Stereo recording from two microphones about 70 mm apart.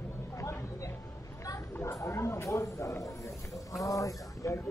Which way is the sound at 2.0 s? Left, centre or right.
Left.